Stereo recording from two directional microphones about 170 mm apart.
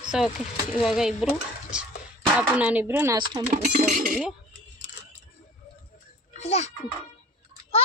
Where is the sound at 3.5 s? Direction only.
50° right (ahead or behind).